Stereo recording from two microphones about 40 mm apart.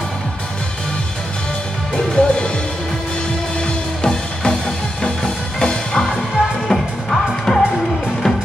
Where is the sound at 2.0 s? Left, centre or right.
Left.